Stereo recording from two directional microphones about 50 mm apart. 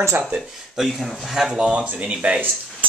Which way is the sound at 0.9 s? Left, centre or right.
Centre.